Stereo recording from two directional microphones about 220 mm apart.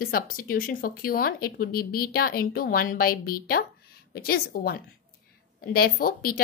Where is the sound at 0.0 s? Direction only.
40° left (ahead or behind).